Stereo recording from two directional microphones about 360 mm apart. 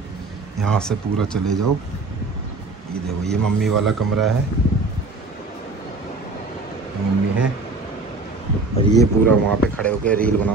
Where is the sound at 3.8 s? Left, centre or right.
Centre.